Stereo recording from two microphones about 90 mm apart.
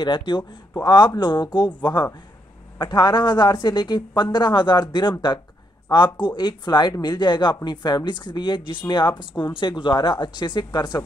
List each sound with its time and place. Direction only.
0.0 s speech: 65° left (ahead or behind)
0.8 s speech: 55° left (ahead or behind)